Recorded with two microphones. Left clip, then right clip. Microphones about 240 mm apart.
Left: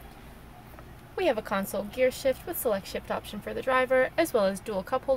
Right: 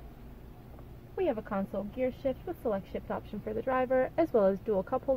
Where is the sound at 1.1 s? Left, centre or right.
Centre.